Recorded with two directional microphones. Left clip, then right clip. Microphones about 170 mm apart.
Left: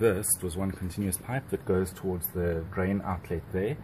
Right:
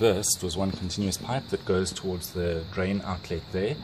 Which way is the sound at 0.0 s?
10° right (ahead or behind).